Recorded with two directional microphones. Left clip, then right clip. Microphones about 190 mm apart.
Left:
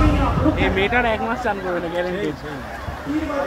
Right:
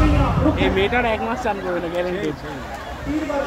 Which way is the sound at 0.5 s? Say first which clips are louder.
Even; 20° right (ahead or behind).